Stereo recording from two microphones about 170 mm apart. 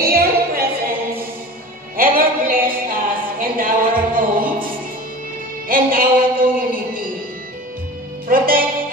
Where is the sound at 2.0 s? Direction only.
55° right (ahead or behind).